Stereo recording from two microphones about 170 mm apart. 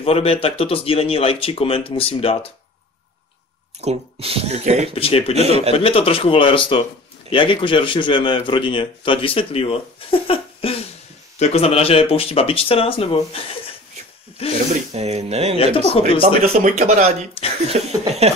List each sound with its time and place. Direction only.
0.0 s speech: 35° left (ahead or behind)
3.8 s speech: 35° right (ahead or behind)
4.9 s speech: 35° left (ahead or behind)
5.3 s speech: 40° right (ahead or behind)
5.8 s speech: 35° left (ahead or behind)
15.0 s speech: 40° right (ahead or behind)
15.5 s speech: 35° left (ahead or behind)
16.2 s speech: 40° right (ahead or behind)
17.6 s speech: 40° right (ahead or behind)